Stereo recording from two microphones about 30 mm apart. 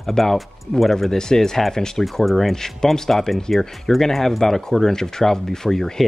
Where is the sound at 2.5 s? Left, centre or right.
Centre.